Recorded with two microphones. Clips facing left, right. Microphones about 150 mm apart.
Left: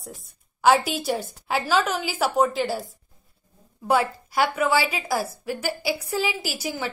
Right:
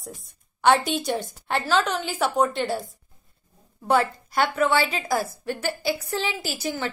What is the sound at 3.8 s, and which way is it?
A woman's voice, 5° left (ahead or behind).